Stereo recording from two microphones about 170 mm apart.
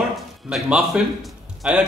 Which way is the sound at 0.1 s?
Centre (ahead or behind).